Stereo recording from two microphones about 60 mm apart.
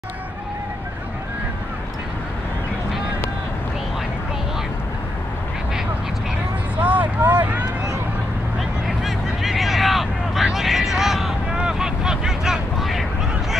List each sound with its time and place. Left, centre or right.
6.8 s vehicle: right
8.8 s vehicle: centre